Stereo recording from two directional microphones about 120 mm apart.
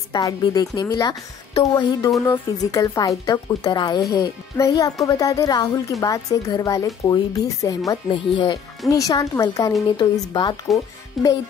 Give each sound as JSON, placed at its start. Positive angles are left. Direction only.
{"t": 0.1, "sound": "a woman's voice", "side_deg": 35}
{"t": 8.1, "sound": "speech", "side_deg": 45}
{"t": 8.8, "sound": "a woman's voice", "side_deg": 30}
{"t": 11.2, "sound": "speech", "side_deg": 0}